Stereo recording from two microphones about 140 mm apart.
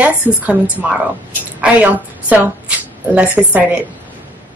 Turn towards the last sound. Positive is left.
turn(degrees=-10)  # may be behind; listen again after turning